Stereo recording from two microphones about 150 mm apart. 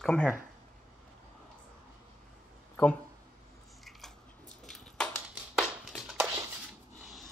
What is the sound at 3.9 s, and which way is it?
Biting, centre (ahead or behind).